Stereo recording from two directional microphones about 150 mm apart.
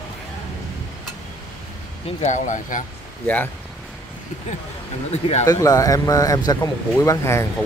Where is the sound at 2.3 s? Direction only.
55° left (ahead or behind).